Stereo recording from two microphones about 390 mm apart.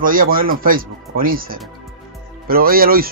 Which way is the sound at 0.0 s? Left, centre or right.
Right.